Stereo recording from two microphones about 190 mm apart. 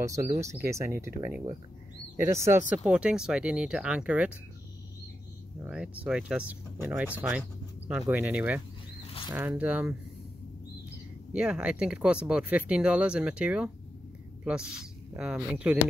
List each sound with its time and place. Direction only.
0.0 s speech: 15° right (ahead or behind)
5.6 s speech: 5° right (ahead or behind)
11.3 s speech: 5° right (ahead or behind)
15.3 s speech: 5° right (ahead or behind)